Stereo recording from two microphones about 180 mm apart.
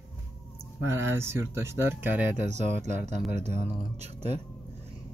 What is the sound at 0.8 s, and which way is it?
Speech, 15° right (ahead or behind).